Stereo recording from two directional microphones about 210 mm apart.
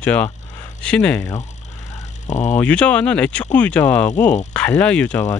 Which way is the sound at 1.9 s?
35° left (ahead or behind).